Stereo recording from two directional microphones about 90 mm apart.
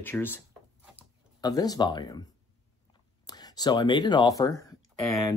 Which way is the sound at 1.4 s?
45° left (ahead or behind).